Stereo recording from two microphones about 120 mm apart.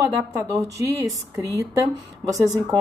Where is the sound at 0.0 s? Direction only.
25° right (ahead or behind).